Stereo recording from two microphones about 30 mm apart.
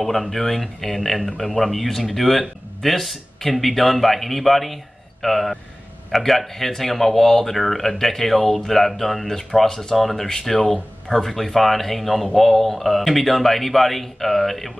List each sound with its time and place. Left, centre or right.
0.0 s a man's voice: centre
10.5 s speech: left
11.1 s a man's voice: centre